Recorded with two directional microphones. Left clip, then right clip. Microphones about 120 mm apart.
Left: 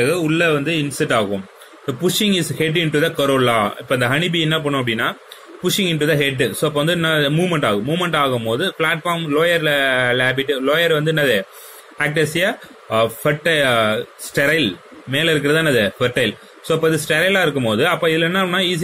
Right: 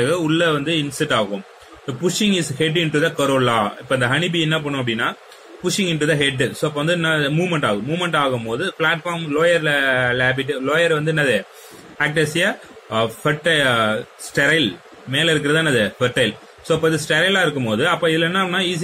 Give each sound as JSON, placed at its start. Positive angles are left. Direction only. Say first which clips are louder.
{"t": 0.0, "sound": "a man's voice", "louder": "left 1 dB", "side_deg": 35}